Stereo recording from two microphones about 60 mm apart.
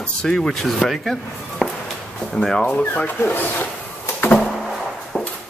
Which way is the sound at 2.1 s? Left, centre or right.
Centre.